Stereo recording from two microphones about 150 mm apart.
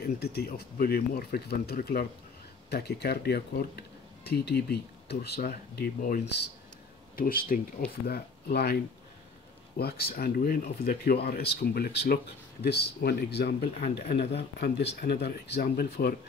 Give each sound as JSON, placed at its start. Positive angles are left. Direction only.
{"t": 0.0, "sound": "speech", "side_deg": 90}
{"t": 8.1, "sound": "speech", "side_deg": 90}
{"t": 9.8, "sound": "speech", "side_deg": 90}